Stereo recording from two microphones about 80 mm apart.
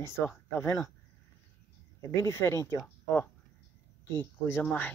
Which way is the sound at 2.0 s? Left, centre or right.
Left.